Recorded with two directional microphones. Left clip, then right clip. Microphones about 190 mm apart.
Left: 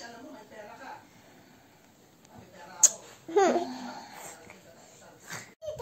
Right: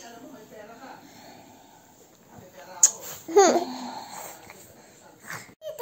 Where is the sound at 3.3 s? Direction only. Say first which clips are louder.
Right 6 dB; 35° right (ahead or behind).